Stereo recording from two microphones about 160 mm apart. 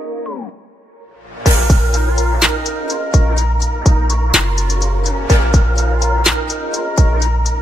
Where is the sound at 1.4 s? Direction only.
Centre (ahead or behind).